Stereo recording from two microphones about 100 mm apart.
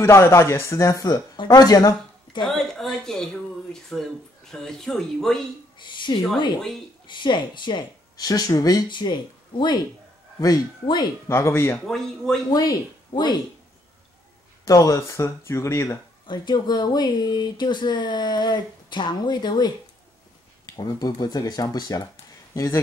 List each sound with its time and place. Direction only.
0.0 s speech: 25° left (ahead or behind)
1.3 s speech: 45° left (ahead or behind)
2.4 s speech: 5° left (ahead or behind)
5.8 s a woman's voice: 50° left (ahead or behind); by 8.8 s 35° left (ahead or behind)
8.9 s speech: 50° left (ahead or behind)
11.2 s speech: 25° left (ahead or behind)
11.8 s speech: 5° left (ahead or behind)
12.5 s speech: 40° left (ahead or behind)
14.6 s speech: 35° left (ahead or behind)
16.3 s speech: 45° left (ahead or behind)
22.5 s speech: 30° left (ahead or behind)